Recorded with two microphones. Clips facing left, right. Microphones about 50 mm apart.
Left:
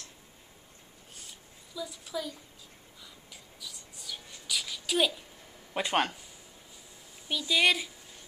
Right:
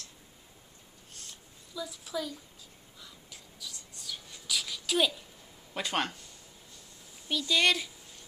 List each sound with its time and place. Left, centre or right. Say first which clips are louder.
1.1 s a sound: even; centre
3.0 s whispering: right 1 dB; centre
5.8 s speech: left 4 dB; left
7.2 s speech: left 1 dB; centre